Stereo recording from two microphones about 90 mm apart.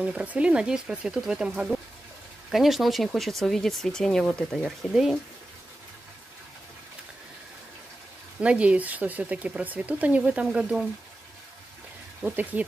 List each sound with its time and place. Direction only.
0.0 s speech: 15° right (ahead or behind)
8.4 s speech: 15° right (ahead or behind)
12.2 s speech: 15° right (ahead or behind)